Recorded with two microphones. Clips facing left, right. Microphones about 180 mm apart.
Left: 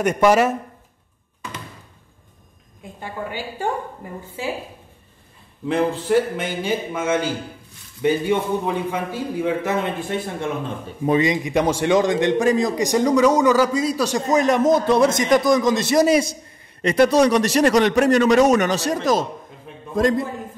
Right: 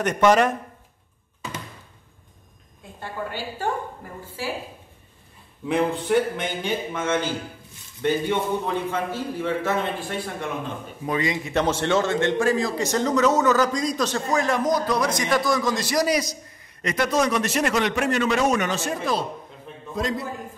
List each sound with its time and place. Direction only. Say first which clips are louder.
0.0 s a man's voice: left 2 dB; 10° left (ahead or behind)
3.0 s a man's voice: left 2 dB; 15° left (ahead or behind)
5.7 s a man's voice: left 2 dB; centre (ahead or behind); by 20.2 s 50° left (ahead or behind)